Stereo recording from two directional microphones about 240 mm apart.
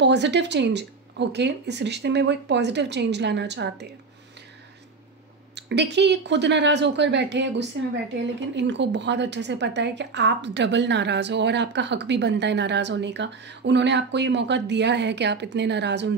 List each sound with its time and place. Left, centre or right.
0.0 s a woman's voice: right
5.6 s a woman's voice: right